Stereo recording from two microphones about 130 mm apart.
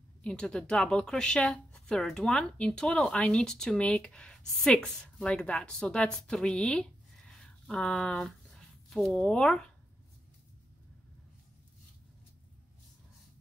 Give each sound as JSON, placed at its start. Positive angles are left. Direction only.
{"t": 0.2, "sound": "speech", "side_deg": 5}